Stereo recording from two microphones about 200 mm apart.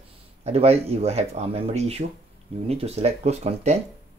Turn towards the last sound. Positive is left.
turn(degrees=-35)  # may be behind; listen again after turning